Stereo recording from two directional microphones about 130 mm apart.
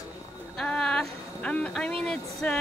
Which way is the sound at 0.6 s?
5° left (ahead or behind).